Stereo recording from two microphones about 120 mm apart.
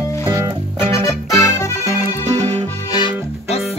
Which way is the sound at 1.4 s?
25° left (ahead or behind).